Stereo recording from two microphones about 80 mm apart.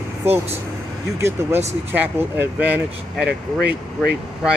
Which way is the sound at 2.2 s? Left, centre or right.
Right.